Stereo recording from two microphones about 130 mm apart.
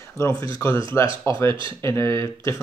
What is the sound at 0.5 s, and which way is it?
Speech, 25° left (ahead or behind).